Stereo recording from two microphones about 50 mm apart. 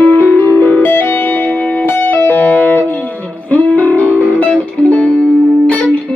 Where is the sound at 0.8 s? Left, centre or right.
Left.